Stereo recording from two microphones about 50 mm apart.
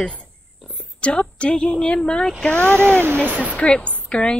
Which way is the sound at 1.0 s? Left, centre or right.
Left.